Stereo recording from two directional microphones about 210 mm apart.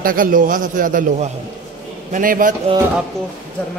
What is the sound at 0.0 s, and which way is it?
A man's voice, 40° right (ahead or behind).